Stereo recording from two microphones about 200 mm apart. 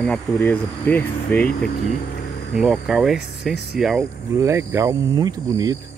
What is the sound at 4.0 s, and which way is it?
Speech, 15° right (ahead or behind).